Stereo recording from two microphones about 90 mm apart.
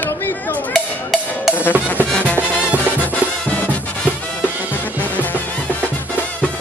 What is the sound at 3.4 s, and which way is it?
Music, 15° left (ahead or behind).